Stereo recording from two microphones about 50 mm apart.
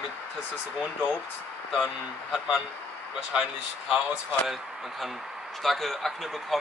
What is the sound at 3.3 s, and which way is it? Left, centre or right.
Speech, centre.